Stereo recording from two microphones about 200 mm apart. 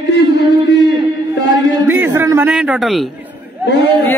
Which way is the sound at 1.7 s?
10° right (ahead or behind).